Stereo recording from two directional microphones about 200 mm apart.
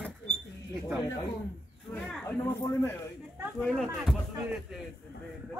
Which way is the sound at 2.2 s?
10° left (ahead or behind).